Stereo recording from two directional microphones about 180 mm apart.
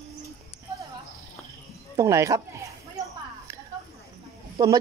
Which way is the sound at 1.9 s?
15° right (ahead or behind).